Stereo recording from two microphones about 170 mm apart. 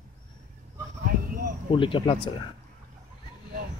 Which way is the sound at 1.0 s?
55° right (ahead or behind).